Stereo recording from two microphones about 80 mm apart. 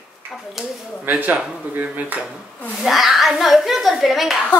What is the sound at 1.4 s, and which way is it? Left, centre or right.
Dishes, centre.